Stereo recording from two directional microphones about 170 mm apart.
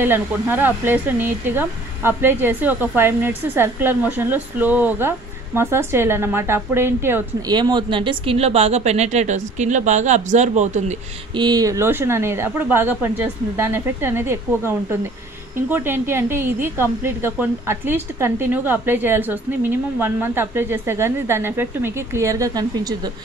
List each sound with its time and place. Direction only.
0.0 s speech: 10° right (ahead or behind)
7.5 s speech: 25° right (ahead or behind); by 11.0 s 45° right (ahead or behind)
11.3 s speech: 25° right (ahead or behind)